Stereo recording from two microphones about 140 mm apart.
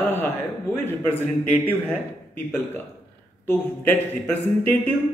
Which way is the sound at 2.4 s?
15° left (ahead or behind).